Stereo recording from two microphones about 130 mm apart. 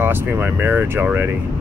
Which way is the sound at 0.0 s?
15° right (ahead or behind).